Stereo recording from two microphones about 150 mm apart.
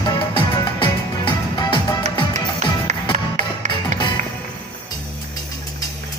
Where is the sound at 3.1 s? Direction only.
60° right (ahead or behind).